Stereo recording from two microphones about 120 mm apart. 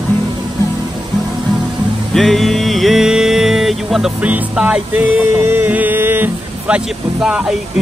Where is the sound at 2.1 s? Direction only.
Centre (ahead or behind).